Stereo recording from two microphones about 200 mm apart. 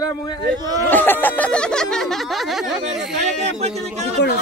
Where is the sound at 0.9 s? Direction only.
10° left (ahead or behind).